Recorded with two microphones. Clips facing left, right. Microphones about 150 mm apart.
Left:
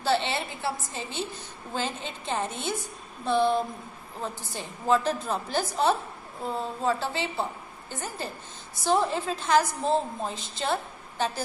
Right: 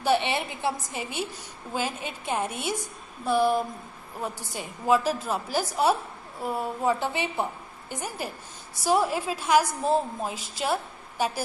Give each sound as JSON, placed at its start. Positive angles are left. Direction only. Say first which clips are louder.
{"t": 0.0, "sound": "a woman's voice", "louder": "right 2 dB", "side_deg": -15}